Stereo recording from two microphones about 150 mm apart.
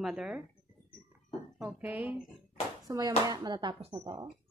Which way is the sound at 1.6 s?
10° right (ahead or behind).